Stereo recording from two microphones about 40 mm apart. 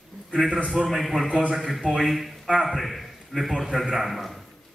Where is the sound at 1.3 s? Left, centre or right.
Centre.